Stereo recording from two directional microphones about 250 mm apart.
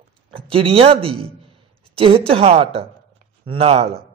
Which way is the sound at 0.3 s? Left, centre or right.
Right.